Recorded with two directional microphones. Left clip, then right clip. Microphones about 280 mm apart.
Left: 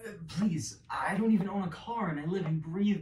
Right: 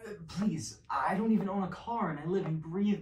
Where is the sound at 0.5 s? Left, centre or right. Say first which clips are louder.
Right 2 dB; right.